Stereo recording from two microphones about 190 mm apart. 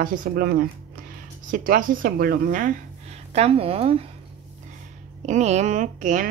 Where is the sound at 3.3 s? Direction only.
30° right (ahead or behind).